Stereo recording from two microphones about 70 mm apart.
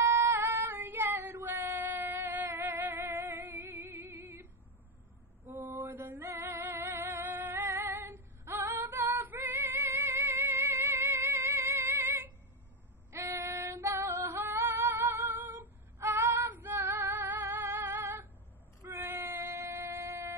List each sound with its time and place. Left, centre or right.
0.0 s female singing: right
2.6 s music: right
5.5 s mantra: right
5.9 s music: right
8.5 s female singing: right
10.5 s music: right
13.1 s female singing: right
16.0 s female singing: right
16.4 s female singing: right
17.0 s music: right
17.8 s female singing: right
19.0 s child singing: right
19.4 s shofar: right